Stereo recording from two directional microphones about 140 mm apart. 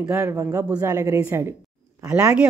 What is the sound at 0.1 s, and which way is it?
A woman's voice, 20° right (ahead or behind).